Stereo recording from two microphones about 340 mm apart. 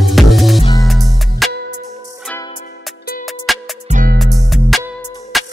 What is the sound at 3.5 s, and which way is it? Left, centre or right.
Music, centre.